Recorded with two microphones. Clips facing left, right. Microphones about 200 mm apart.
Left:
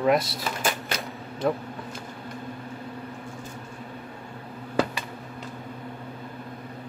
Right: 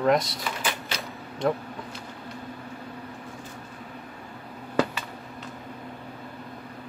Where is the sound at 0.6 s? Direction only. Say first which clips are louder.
Left 5 dB; 50° left (ahead or behind).